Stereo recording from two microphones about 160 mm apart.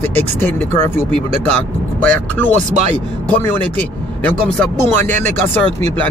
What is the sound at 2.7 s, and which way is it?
Speech, 45° right (ahead or behind).